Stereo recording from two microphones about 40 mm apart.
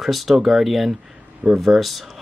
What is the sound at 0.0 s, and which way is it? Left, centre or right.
Speech, centre.